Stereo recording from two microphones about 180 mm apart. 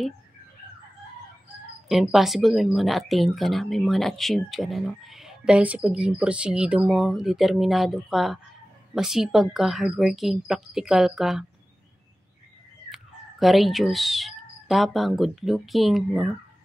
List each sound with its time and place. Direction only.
1.9 s speech: centre (ahead or behind)
12.9 s speech: centre (ahead or behind)